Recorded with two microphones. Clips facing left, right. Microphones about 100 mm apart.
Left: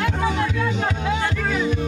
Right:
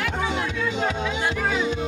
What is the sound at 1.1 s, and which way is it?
Music, 20° right (ahead or behind).